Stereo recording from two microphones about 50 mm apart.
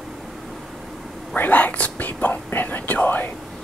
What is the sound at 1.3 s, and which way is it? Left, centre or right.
Whispering, left.